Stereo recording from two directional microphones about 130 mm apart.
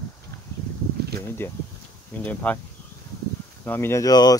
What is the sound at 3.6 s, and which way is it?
Speech, 15° left (ahead or behind).